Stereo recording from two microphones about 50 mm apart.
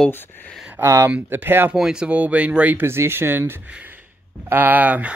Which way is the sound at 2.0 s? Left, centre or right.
Right.